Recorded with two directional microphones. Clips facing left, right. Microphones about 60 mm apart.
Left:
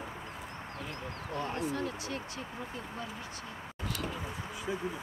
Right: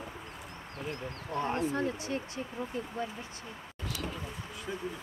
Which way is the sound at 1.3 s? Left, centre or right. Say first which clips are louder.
Right 4 dB; right.